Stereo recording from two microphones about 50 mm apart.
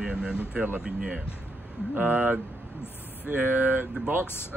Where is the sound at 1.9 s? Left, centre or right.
Right.